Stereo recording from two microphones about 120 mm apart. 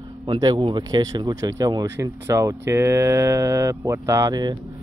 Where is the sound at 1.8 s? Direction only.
20° right (ahead or behind).